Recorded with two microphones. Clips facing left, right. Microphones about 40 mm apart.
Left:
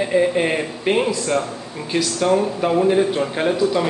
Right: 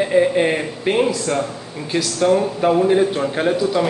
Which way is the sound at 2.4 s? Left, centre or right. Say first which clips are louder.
Right 2 dB; centre.